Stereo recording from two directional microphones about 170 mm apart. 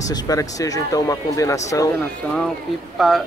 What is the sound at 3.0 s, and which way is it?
Speech, centre (ahead or behind).